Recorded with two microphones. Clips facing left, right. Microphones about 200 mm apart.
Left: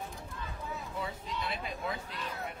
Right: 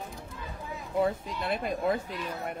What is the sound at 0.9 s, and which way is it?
Speech, 50° right (ahead or behind).